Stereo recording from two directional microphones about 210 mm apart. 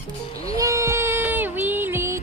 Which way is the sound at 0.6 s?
15° right (ahead or behind).